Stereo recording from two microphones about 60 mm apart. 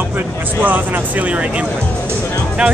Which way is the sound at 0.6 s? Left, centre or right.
Right.